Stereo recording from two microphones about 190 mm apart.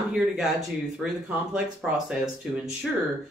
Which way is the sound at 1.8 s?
5° right (ahead or behind).